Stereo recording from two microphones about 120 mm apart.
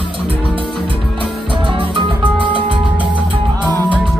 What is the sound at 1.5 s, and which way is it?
Music, 45° right (ahead or behind).